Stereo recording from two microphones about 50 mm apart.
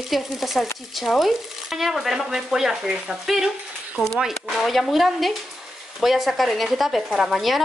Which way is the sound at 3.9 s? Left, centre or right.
Centre.